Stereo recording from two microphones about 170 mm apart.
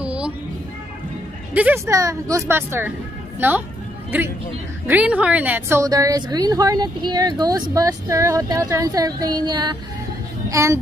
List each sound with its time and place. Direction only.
0.0 s music: 5° right (ahead or behind)
1.5 s a woman's voice: 10° right (ahead or behind)
1.9 s a woman's voice: 20° right (ahead or behind)
4.8 s a woman's voice: 10° right (ahead or behind)